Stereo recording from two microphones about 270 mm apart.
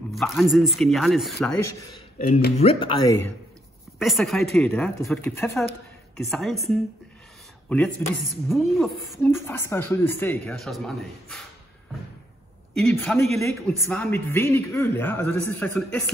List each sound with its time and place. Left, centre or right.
0.1 s a woman's voice: centre
2.1 s speech: left
3.1 s a man's voice: centre
8.3 s a woman's voice: centre
12.7 s a man's voice: centre